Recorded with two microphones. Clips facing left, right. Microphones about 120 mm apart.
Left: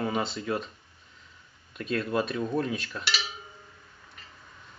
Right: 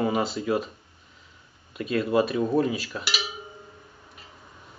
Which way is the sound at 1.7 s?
5° right (ahead or behind).